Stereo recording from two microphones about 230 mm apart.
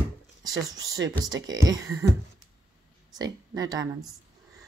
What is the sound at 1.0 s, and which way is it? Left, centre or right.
Speech, right.